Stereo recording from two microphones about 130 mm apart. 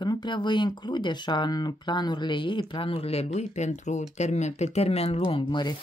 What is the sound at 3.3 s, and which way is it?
Speech, 60° left (ahead or behind).